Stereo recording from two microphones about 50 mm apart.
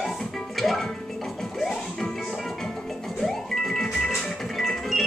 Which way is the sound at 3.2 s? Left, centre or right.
Centre.